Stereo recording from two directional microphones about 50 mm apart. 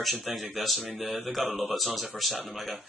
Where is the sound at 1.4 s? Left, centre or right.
Right.